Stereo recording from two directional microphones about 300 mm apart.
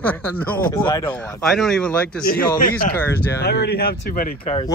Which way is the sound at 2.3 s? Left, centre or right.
Left.